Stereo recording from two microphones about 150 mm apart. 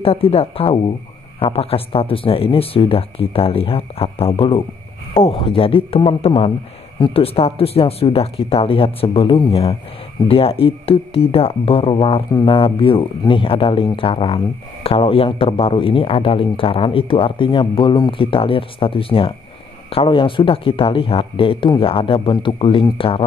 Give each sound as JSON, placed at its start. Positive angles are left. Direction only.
{"t": 0.0, "sound": "speech", "side_deg": 40}